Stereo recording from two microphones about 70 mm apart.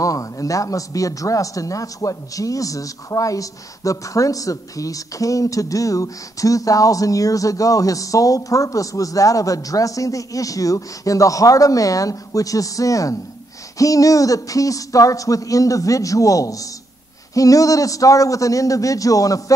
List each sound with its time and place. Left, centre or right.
0.0 s speech: left